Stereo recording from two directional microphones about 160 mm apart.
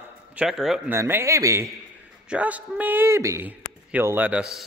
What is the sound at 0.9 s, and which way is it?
A man's voice, 15° right (ahead or behind).